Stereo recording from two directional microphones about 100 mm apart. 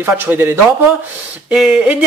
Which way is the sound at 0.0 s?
20° right (ahead or behind).